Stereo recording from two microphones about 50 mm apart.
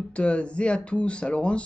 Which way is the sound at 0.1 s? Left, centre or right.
Left.